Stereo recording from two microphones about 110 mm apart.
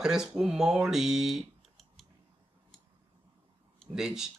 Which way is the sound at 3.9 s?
5° right (ahead or behind).